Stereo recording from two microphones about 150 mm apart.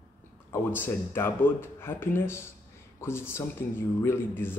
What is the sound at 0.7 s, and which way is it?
Speech, 15° left (ahead or behind).